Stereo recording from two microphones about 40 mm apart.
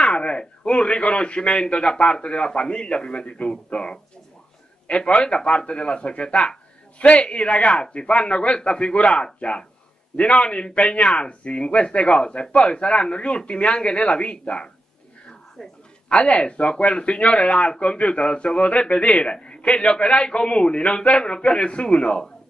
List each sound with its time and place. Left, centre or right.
0.0 s speech: left
7.8 s speech: centre
16.1 s speech: left